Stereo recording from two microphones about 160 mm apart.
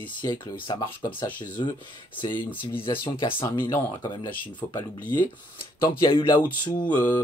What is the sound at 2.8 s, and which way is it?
Speech, 35° left (ahead or behind).